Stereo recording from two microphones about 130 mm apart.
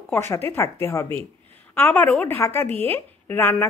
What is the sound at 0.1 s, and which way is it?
A woman's voice, 20° left (ahead or behind).